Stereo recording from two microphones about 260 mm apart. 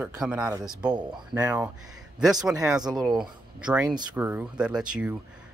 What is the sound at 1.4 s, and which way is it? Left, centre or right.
Speech, centre.